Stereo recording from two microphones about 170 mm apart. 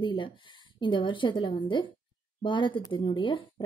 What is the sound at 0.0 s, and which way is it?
A woman's voice, 30° left (ahead or behind).